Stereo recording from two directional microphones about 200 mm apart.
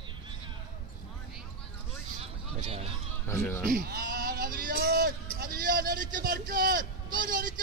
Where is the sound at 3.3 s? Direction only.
15° left (ahead or behind).